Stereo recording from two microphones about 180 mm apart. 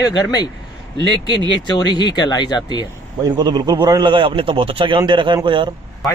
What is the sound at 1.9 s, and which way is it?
Speech, 25° left (ahead or behind).